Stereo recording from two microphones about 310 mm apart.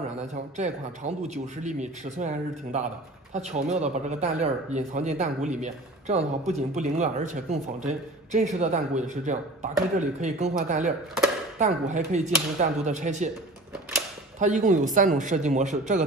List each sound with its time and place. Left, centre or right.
0.3 s speech: right
14.4 s speech: right